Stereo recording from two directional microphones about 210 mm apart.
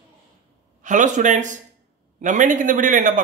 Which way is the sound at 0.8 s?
35° right (ahead or behind).